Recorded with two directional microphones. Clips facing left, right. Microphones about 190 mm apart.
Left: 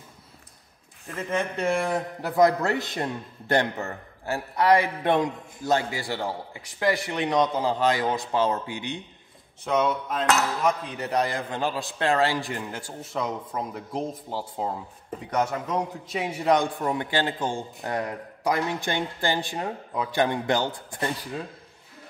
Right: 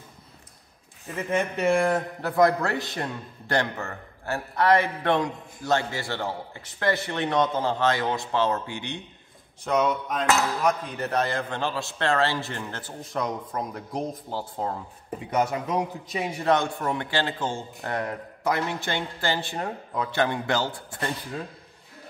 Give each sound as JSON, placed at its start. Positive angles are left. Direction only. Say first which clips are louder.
{"t": 1.1, "sound": "speech", "louder": "right 2 dB", "side_deg": -15}
{"t": 1.7, "sound": "speech", "louder": "right 4 dB", "side_deg": 0}
{"t": 2.2, "sound": "a man's voice", "louder": "left 1 dB", "side_deg": 20}
{"t": 9.7, "sound": "a man's voice", "louder": "even", "side_deg": 0}
{"t": 15.0, "sound": "speech", "louder": "right 1 dB", "side_deg": -10}
{"t": 16.1, "sound": "a man's voice", "louder": "left 1 dB", "side_deg": 5}